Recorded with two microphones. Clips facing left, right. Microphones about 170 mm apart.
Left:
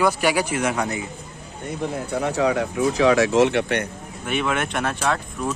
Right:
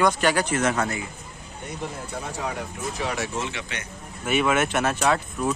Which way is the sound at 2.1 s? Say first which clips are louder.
Left 12 dB; 70° left (ahead or behind).